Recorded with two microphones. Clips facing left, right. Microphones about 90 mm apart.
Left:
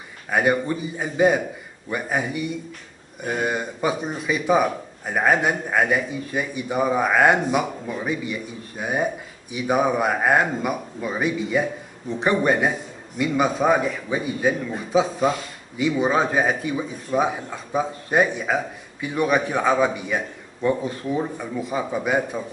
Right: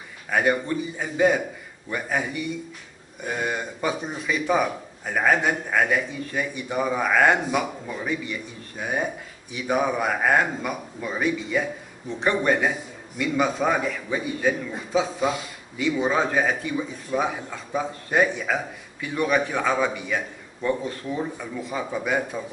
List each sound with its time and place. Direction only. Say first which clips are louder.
0.3 s a man's voice: left 2 dB; 15° left (ahead or behind)
3.3 s a man's voice: left 3 dB; 10° left (ahead or behind)
21.4 s a man's voice: left 4 dB; 15° left (ahead or behind)